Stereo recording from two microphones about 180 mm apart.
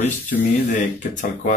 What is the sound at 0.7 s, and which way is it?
Speech, 45° left (ahead or behind).